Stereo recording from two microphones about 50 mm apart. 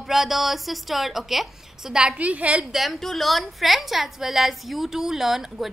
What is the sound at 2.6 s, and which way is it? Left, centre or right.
A woman's voice, centre.